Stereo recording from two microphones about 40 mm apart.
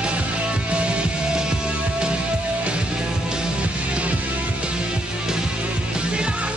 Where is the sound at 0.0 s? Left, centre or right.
Right.